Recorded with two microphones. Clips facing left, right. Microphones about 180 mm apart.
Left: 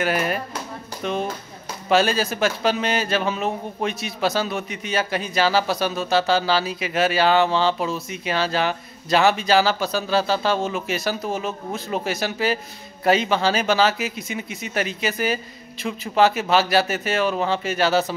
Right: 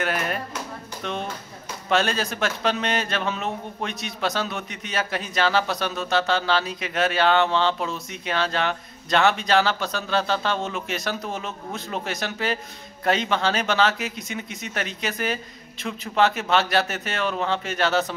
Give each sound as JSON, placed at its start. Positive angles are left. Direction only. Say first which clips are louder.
{"t": 0.0, "sound": "a man's voice", "louder": "left 4 dB", "side_deg": 5}